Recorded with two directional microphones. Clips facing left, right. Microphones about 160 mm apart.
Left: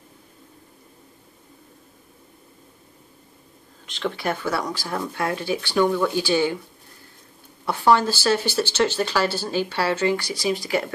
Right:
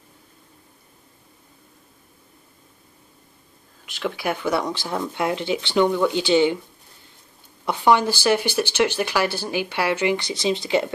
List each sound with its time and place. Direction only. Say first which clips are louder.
3.8 s speech: even; 10° right (ahead or behind)
7.6 s speech: even; 15° right (ahead or behind)